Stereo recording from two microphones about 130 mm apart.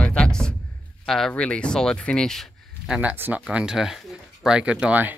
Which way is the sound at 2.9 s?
15° right (ahead or behind).